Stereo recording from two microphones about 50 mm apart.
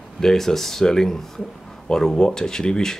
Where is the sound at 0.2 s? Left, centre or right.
Centre.